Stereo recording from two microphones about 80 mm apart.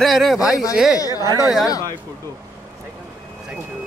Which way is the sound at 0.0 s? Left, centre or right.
Centre.